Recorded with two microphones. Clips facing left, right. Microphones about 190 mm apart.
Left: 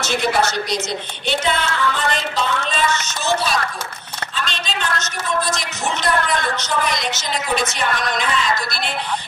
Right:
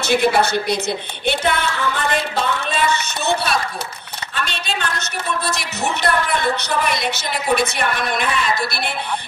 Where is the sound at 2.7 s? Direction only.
60° right (ahead or behind).